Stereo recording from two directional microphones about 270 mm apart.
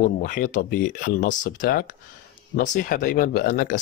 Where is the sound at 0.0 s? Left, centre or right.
Left.